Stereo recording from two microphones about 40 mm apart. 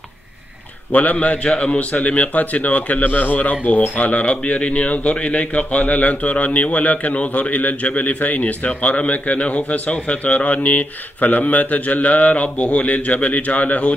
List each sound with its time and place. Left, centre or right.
0.9 s a man's voice: left